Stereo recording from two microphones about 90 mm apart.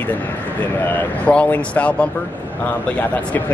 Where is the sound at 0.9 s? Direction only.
15° left (ahead or behind).